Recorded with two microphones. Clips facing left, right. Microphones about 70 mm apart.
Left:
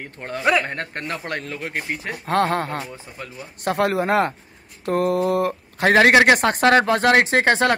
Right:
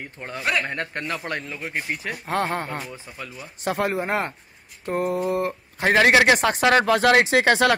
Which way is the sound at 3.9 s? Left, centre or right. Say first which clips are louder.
Left 5 dB; left.